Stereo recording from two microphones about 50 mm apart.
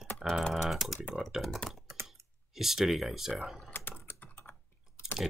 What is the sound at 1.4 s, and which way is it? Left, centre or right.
Speech, centre.